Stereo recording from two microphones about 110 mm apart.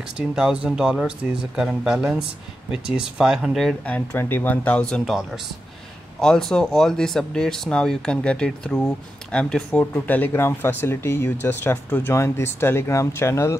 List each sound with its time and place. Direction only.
0.4 s speech: 10° right (ahead or behind)
3.8 s speech: 15° left (ahead or behind)